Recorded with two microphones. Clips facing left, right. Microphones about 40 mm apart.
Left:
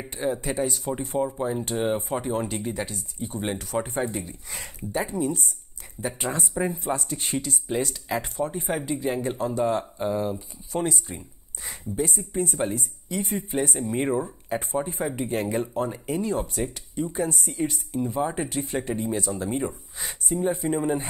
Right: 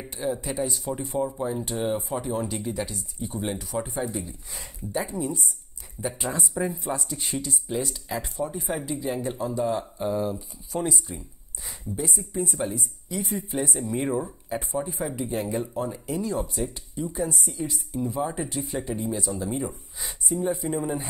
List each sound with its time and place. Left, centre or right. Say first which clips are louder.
0.1 s a woman's voice: left 2 dB; left
1.7 s speech: left 3 dB; centre
2.1 s speech: left 1 dB; left
3.5 s a woman's voice: left 2 dB; left
7.8 s a woman's voice: left 3 dB; left
9.5 s speech: left 2 dB; left
10.0 s speech: right 1 dB; centre
10.7 s a woman's voice: left 1 dB; left
14.5 s a woman's voice: left 2 dB; left
18.0 s speech: left 2 dB; left